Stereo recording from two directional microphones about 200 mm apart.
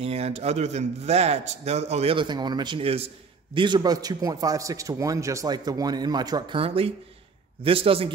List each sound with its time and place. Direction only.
0.0 s a man's voice: 30° right (ahead or behind)